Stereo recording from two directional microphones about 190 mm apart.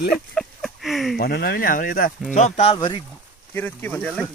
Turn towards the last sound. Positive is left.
turn(degrees=5)  # may be behind; listen again after turning